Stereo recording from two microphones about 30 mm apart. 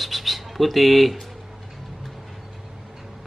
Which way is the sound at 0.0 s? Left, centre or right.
Centre.